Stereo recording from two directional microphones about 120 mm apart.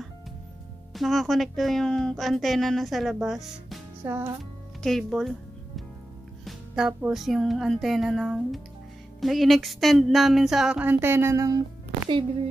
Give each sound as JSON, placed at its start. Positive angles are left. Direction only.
{"t": 0.9, "sound": "speech", "side_deg": 0}
{"t": 4.0, "sound": "music", "side_deg": -15}
{"t": 4.8, "sound": "speech", "side_deg": 0}
{"t": 6.4, "sound": "music", "side_deg": -5}
{"t": 7.1, "sound": "speech", "side_deg": 0}